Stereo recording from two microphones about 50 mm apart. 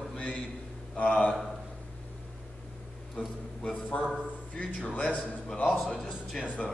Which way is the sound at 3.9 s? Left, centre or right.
Left.